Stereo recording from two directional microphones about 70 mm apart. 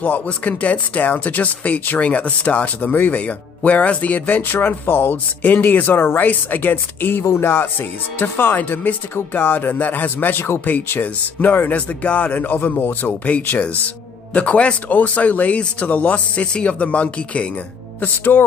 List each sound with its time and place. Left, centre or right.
0.0 s speech: left
18.0 s speech: left